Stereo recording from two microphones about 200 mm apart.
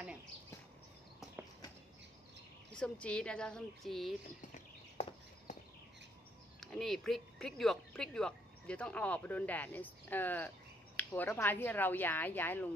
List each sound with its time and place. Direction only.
2.7 s speech: 5° left (ahead or behind)
5.0 s a sound: 30° left (ahead or behind)
6.6 s speech: centre (ahead or behind)